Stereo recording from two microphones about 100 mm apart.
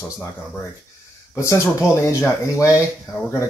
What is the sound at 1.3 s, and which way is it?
Speech, 30° left (ahead or behind).